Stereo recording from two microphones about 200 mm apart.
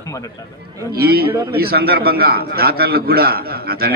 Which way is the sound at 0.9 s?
50° right (ahead or behind).